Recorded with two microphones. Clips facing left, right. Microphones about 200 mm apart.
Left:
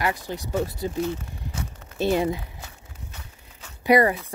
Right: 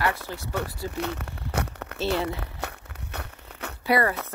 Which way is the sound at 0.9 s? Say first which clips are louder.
Left 3 dB; 70° right (ahead or behind).